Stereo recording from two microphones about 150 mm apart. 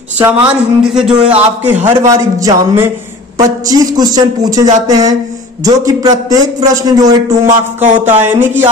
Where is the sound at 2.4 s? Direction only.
15° right (ahead or behind).